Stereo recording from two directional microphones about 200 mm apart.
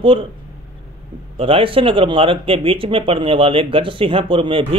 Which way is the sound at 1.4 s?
25° right (ahead or behind).